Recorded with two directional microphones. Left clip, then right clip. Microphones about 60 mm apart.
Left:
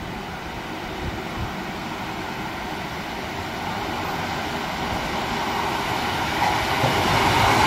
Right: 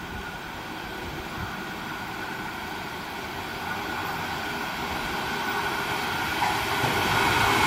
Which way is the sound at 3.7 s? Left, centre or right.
Left.